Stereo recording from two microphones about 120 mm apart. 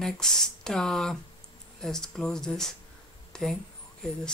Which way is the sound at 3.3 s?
5° left (ahead or behind).